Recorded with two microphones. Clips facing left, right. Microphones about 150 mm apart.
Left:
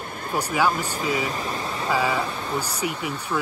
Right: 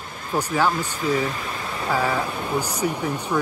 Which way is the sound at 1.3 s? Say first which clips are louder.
Left 2 dB; 35° left (ahead or behind).